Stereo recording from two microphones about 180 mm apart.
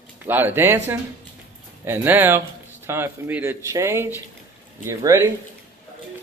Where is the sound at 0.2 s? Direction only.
10° right (ahead or behind).